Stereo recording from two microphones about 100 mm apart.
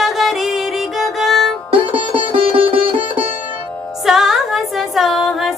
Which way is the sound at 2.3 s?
65° right (ahead or behind).